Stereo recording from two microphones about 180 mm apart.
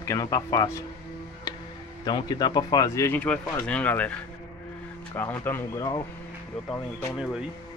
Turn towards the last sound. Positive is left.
turn(degrees=-5)  # may be behind; listen again after turning